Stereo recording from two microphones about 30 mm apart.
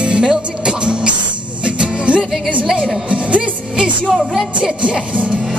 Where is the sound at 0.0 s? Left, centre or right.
Right.